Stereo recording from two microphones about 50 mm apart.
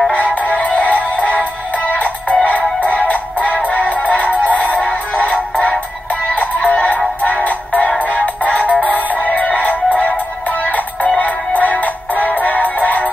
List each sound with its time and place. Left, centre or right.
0.1 s music: left